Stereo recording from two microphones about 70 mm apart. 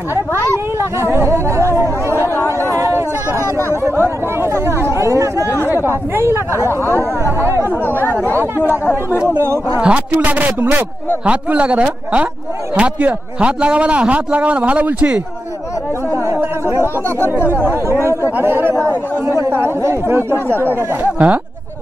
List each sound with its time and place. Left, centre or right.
1.1 s speech: right
2.2 s chatter: left
2.7 s a sound: right
3.3 s a sound: left
3.7 s chatter: right
4.4 s speech: right
4.9 s chatter: right
5.9 s speech: right
6.7 s speech: left
8.4 s speech: right
9.4 s speech: right
9.8 s a man's voice: centre
16.7 s speech: right
20.7 s a man's voice: right